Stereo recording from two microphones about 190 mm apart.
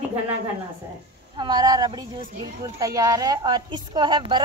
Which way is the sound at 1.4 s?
20° right (ahead or behind).